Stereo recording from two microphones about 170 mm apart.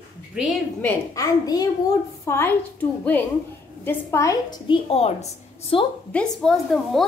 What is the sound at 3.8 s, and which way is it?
A woman's voice, 15° left (ahead or behind).